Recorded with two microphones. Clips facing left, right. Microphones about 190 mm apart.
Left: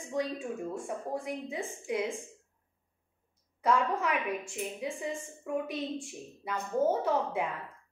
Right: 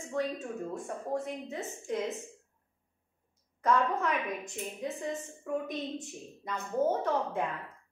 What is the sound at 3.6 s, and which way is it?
A woman's voice, 10° left (ahead or behind).